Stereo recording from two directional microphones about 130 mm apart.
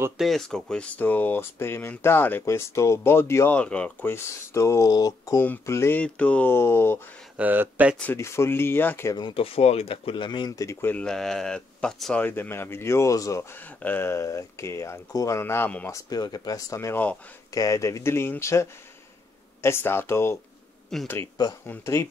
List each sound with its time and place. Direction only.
0.2 s speech: centre (ahead or behind)
4.1 s speech: 20° left (ahead or behind)
5.4 s speech: 15° left (ahead or behind)
7.3 s speech: 15° right (ahead or behind)
8.1 s speech: 20° left (ahead or behind)
9.1 s speech: 40° left (ahead or behind); by 15.9 s 15° left (ahead or behind)
15.9 s speech: 30° left (ahead or behind); by 17.2 s 15° left (ahead or behind)
17.5 s speech: 25° left (ahead or behind)